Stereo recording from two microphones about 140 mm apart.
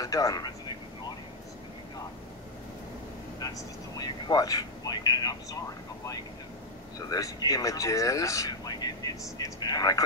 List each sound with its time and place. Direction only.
0.0 s a sound: 25° left (ahead or behind)
3.3 s speech: 30° left (ahead or behind)
7.0 s speech: 25° left (ahead or behind)